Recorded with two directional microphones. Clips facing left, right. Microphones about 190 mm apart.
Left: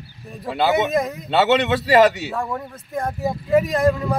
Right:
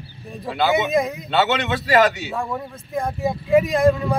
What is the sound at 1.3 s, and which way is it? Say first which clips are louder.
Speech: left 4 dB; 30° left (ahead or behind).